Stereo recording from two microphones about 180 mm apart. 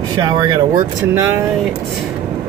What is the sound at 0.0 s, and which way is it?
Speech, 20° right (ahead or behind).